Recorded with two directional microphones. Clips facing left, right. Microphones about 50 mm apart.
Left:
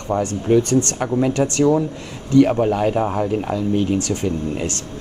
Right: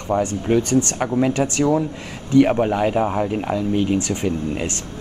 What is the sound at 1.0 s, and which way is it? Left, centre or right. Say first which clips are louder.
Speech: even; centre.